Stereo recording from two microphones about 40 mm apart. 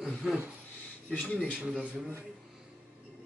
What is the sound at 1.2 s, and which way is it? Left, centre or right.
Speech, left.